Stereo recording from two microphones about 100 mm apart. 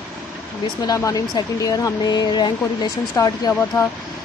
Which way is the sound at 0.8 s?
35° left (ahead or behind).